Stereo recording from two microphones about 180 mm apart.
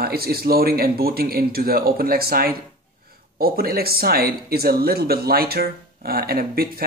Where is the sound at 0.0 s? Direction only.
60° right (ahead or behind).